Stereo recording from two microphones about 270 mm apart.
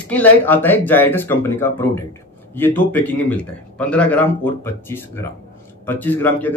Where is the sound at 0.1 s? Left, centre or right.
Centre.